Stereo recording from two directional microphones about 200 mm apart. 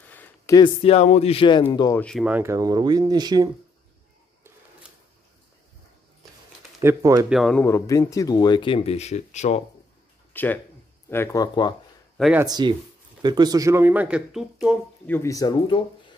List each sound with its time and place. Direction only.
0.1 s a sound: 10° left (ahead or behind)
0.6 s speech: 30° left (ahead or behind)
2.0 s speech: 5° left (ahead or behind)
2.2 s speech: 10° right (ahead or behind)
6.8 s speech: 15° right (ahead or behind)
7.2 s speech: centre (ahead or behind)
7.6 s speech: 15° left (ahead or behind); by 9.6 s 35° left (ahead or behind)
10.3 s speech: 10° left (ahead or behind)
12.2 s speech: 5° right (ahead or behind)
12.4 s speech: 20° right (ahead or behind); by 14.8 s 5° right (ahead or behind)
15.0 s speech: 15° left (ahead or behind)